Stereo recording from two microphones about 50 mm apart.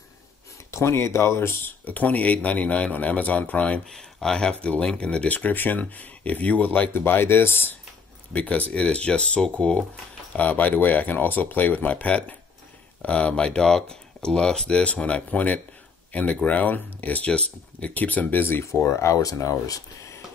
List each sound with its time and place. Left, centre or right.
0.7 s speech: left
1.9 s speech: left
3.9 s speech: centre
4.6 s speech: left
6.9 s speech: left
8.3 s speech: left
10.3 s speech: left
18.5 s speech: left
18.9 s speech: left